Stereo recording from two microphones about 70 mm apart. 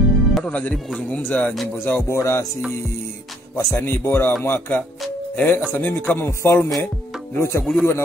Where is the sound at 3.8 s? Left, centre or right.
Left.